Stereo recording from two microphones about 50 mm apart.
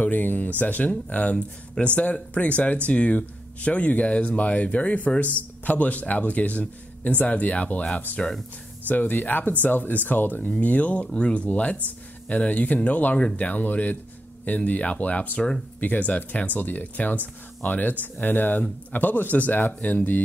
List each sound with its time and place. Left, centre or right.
0.0 s speech: left
1.8 s speech: left
11.1 s speech: centre